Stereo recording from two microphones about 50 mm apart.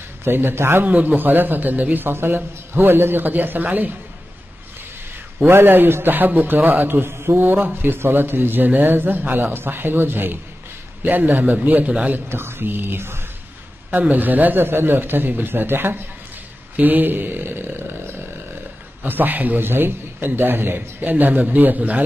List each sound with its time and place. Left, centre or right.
0.2 s a man's voice: right
0.8 s a man's voice: right
5.5 s a man's voice: right
12.3 s a man's voice: right
13.9 s a man's voice: right